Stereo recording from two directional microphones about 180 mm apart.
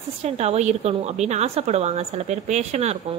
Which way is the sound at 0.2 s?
35° right (ahead or behind).